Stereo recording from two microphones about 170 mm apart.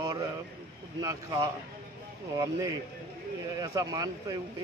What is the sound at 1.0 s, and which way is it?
A man's voice, 20° right (ahead or behind).